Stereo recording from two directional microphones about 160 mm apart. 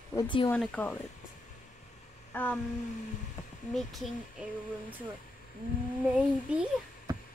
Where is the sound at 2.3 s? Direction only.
10° left (ahead or behind).